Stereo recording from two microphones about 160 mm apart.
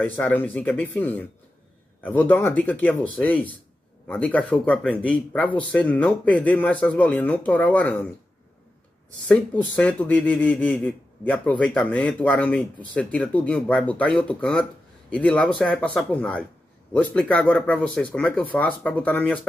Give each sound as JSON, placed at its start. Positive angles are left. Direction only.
{"t": 0.0, "sound": "speech", "side_deg": 10}
{"t": 9.3, "sound": "speech", "side_deg": 10}